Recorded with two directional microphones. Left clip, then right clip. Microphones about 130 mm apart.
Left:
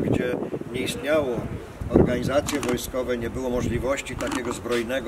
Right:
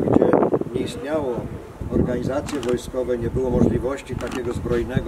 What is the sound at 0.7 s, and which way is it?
Speech, 25° left (ahead or behind).